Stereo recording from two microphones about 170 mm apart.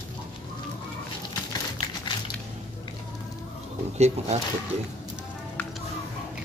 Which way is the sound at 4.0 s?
40° right (ahead or behind).